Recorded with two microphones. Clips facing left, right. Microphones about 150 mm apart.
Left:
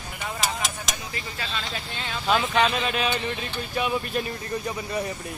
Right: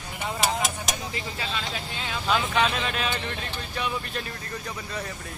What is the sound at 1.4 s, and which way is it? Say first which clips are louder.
Speech: left 1 dB; 5° right (ahead or behind).